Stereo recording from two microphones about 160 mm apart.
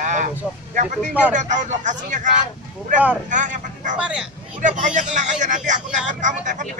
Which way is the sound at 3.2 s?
50° right (ahead or behind).